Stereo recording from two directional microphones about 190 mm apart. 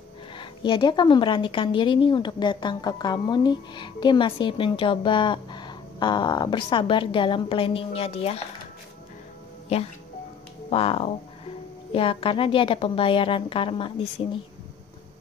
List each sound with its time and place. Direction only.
0.4 s speech: 25° left (ahead or behind)
9.7 s speech: 35° left (ahead or behind)